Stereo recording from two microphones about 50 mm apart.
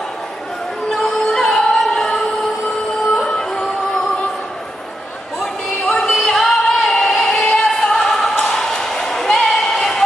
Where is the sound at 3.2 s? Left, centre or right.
Centre.